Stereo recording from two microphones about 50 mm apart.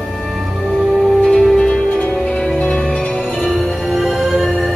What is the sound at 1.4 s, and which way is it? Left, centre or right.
Music, centre.